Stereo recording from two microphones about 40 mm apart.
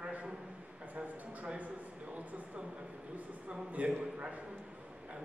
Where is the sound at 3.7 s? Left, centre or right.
Right.